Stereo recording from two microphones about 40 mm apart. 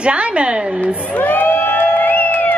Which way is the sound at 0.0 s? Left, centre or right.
Right.